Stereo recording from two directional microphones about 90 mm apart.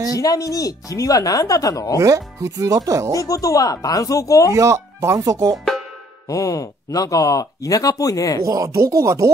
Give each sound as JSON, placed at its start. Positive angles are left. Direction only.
{"t": 0.1, "sound": "speech", "side_deg": 40}
{"t": 2.0, "sound": "speech", "side_deg": -40}
{"t": 3.2, "sound": "speech", "side_deg": 40}
{"t": 4.6, "sound": "speech", "side_deg": -35}
{"t": 6.2, "sound": "speech", "side_deg": 40}
{"t": 8.5, "sound": "speech", "side_deg": -35}